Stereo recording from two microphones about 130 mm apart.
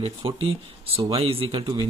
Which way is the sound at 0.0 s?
45° right (ahead or behind).